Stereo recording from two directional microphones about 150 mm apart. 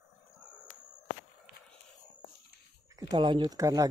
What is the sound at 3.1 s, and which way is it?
Speech, 30° right (ahead or behind).